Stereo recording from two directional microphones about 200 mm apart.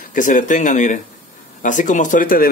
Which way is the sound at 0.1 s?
40° left (ahead or behind).